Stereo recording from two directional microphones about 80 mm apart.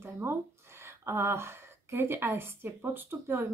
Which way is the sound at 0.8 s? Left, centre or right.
Right.